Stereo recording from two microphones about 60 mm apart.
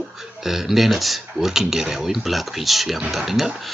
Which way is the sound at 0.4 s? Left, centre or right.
Centre.